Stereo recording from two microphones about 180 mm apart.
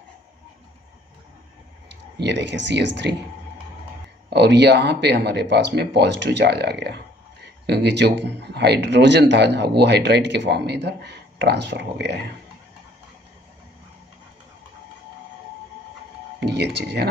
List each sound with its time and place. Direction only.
2.2 s a man's voice: 80° right
4.3 s a man's voice: 70° right (ahead or behind)
16.3 s speech: 65° right (ahead or behind)